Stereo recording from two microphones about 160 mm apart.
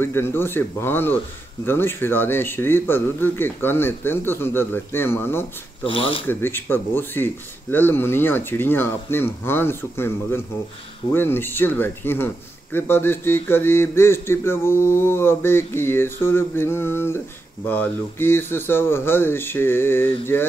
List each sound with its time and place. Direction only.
0.0 s speech: 15° left (ahead or behind)
5.9 s speech: 35° left (ahead or behind)
6.2 s speech: 15° left (ahead or behind)